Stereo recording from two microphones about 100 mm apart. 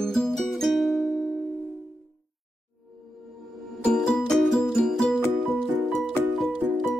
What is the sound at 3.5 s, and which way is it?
Music, centre (ahead or behind).